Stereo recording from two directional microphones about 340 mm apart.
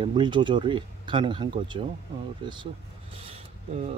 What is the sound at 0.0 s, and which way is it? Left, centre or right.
Speech, centre.